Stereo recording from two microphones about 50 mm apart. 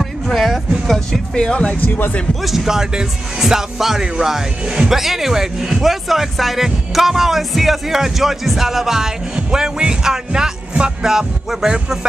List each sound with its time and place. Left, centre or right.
0.0 s music: centre
1.8 s speech: left
2.4 s speech: centre